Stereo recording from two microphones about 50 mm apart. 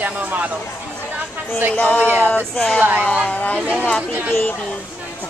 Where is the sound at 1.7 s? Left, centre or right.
Left.